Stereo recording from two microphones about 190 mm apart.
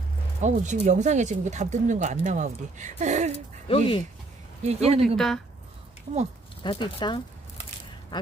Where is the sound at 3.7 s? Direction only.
25° left (ahead or behind).